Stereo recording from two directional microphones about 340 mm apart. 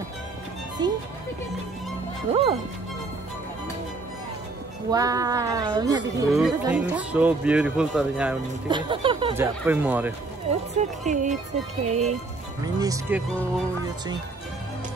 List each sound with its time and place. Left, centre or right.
0.8 s speech: centre
2.3 s a woman's voice: centre
4.9 s a woman's voice: centre
10.5 s a woman's voice: centre